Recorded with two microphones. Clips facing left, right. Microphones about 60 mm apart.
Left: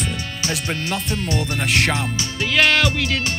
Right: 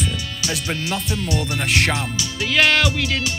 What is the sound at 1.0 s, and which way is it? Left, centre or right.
Speech, left.